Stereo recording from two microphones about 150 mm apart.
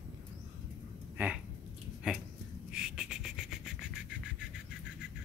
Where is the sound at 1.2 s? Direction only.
15° right (ahead or behind).